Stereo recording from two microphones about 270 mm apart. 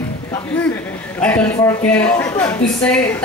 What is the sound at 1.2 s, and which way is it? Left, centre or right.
Speech, centre.